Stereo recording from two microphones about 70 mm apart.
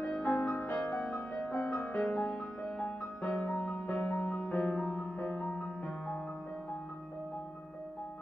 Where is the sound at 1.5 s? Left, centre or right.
Left.